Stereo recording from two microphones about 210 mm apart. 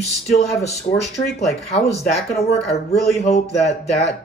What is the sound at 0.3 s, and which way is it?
A man's voice, 30° left (ahead or behind).